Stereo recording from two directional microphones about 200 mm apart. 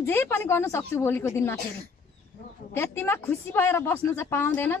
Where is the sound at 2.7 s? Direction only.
10° left (ahead or behind).